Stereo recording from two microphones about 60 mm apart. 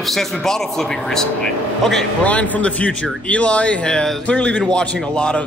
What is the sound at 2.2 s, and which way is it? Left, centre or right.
A man's voice, left.